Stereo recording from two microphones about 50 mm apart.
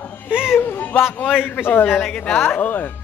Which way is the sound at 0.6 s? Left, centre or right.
Left.